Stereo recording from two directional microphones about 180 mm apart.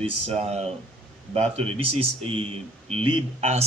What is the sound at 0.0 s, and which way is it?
Speech, 35° right (ahead or behind).